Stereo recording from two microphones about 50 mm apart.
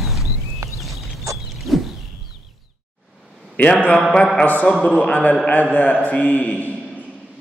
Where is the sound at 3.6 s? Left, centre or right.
Left.